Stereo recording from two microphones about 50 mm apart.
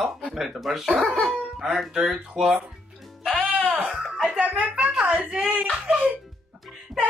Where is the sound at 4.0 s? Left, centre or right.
Centre.